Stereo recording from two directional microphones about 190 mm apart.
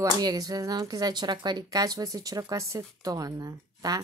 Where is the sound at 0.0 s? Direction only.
20° right (ahead or behind).